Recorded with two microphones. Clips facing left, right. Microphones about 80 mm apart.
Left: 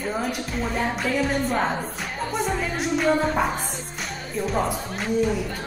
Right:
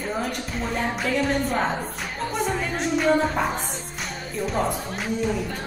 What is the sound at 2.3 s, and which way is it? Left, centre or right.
Music, centre.